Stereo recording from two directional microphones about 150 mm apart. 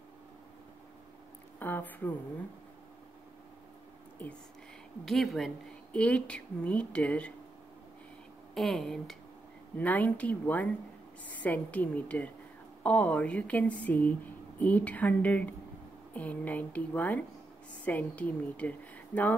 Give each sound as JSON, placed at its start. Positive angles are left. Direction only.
{"t": 1.6, "sound": "speech", "side_deg": 10}
{"t": 5.0, "sound": "speech", "side_deg": 0}
{"t": 8.5, "sound": "speech", "side_deg": 0}